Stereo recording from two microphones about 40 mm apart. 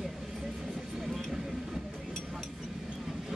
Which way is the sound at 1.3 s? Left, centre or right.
Centre.